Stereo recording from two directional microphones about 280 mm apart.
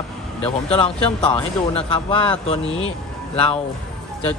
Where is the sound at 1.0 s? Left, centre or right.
Centre.